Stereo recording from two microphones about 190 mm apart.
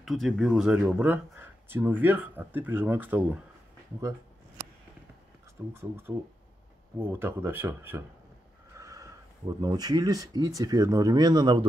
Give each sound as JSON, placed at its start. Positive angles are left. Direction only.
{"t": 0.0, "sound": "speech", "side_deg": 0}
{"t": 5.7, "sound": "speech", "side_deg": -10}